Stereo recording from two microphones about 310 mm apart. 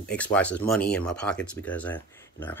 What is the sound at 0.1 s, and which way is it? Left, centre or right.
Speech, centre.